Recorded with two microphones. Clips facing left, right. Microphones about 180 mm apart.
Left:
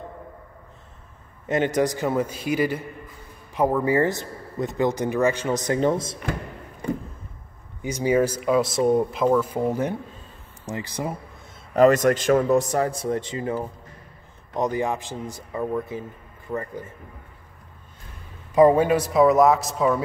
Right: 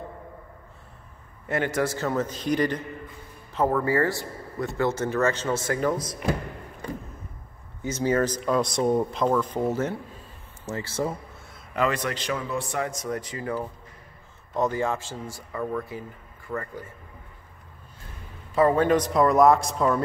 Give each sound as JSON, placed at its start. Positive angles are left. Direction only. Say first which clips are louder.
{"t": 1.5, "sound": "speech", "louder": "left 4 dB", "side_deg": 20}
{"t": 7.8, "sound": "speech", "louder": "left 3 dB", "side_deg": 15}
{"t": 11.7, "sound": "speech", "louder": "left 10 dB", "side_deg": 40}
{"t": 18.5, "sound": "speech", "louder": "left 4 dB", "side_deg": 15}